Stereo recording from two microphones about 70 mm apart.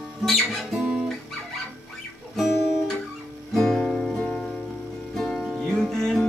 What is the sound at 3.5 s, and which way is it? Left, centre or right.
Music, centre.